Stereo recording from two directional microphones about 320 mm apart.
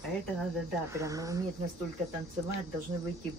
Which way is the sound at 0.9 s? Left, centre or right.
Centre.